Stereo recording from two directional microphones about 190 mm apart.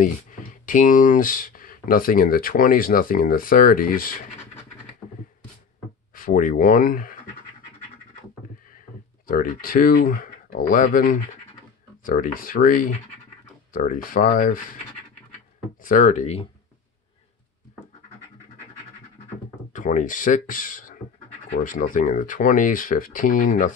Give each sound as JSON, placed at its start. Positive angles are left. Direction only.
{"t": 0.0, "sound": "speech", "side_deg": 45}
{"t": 6.1, "sound": "speech", "side_deg": 45}
{"t": 9.3, "sound": "speech", "side_deg": 45}
{"t": 15.8, "sound": "speech", "side_deg": 45}
{"t": 19.7, "sound": "speech", "side_deg": 45}